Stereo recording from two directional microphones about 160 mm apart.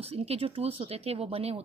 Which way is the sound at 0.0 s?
40° right (ahead or behind).